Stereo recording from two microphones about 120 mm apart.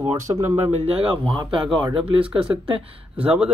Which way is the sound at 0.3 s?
35° right (ahead or behind).